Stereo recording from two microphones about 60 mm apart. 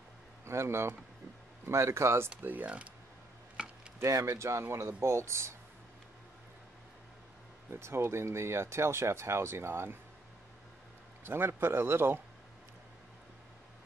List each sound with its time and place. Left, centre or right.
0.5 s speech: right
2.4 s speech: right
3.5 s chopping: centre
4.0 s speech: right
7.7 s speech: right
11.2 s a man's voice: right